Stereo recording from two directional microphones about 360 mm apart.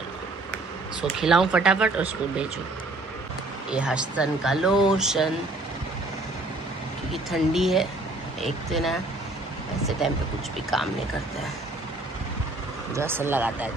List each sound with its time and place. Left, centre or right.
1.0 s speech: centre
3.7 s speech: centre
7.1 s speech: centre
10.0 s speech: centre
12.9 s speech: centre